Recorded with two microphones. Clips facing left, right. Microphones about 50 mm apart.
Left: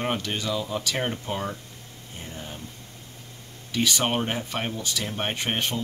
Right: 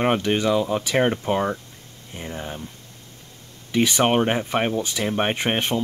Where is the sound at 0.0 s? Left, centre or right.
Right.